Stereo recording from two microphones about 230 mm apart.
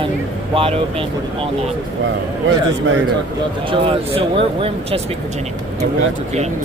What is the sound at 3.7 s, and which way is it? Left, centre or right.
Speech, right.